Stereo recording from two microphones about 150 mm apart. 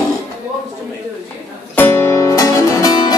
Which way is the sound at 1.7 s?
15° left (ahead or behind).